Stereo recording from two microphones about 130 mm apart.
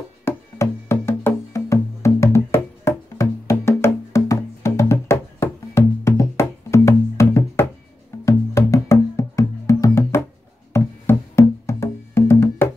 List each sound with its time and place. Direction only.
0.2 s music: 20° left (ahead or behind)